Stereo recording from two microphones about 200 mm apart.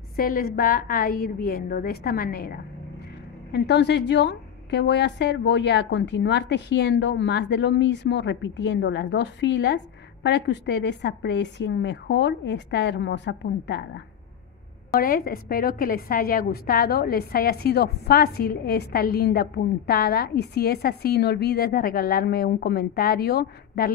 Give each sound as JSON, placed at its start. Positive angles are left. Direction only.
{"t": 0.1, "sound": "a woman's voice", "side_deg": 45}
{"t": 15.0, "sound": "a woman's voice", "side_deg": 45}